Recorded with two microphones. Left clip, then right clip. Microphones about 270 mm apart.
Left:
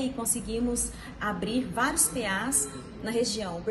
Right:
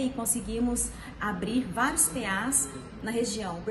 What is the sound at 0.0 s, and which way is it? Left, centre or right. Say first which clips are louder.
A woman's voice: even; centre.